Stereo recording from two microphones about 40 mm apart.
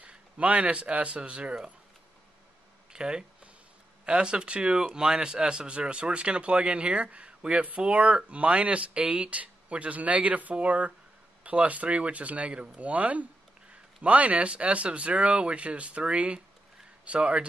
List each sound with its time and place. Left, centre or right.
0.0 s speech: right
2.9 s speech: right